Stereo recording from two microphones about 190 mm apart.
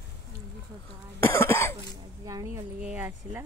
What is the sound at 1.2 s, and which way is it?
Cough, 15° left (ahead or behind).